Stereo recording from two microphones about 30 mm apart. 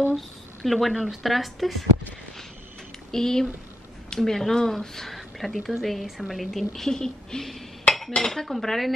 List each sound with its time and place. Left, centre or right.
0.7 s speech: centre
3.1 s speech: centre
4.2 s cutlery: centre
4.6 s speech: centre
6.9 s speech: centre
7.9 s dishes: left
8.2 s cutlery: centre